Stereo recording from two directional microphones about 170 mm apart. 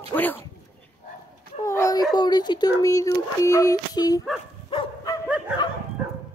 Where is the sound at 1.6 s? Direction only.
20° left (ahead or behind).